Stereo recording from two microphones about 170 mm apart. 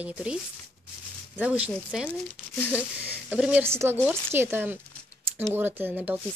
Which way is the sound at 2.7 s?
10° right (ahead or behind).